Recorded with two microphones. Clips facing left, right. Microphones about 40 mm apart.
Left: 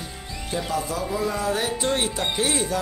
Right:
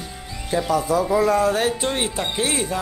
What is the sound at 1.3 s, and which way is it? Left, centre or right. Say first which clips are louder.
Speech: right 6 dB; right.